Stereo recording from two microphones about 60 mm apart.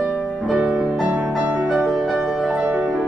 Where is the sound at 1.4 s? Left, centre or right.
Right.